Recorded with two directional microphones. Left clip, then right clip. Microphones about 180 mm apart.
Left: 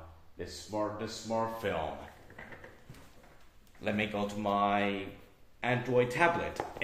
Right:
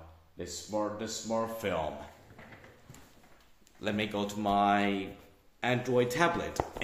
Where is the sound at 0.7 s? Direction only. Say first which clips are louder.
Right 1 dB; 30° right (ahead or behind).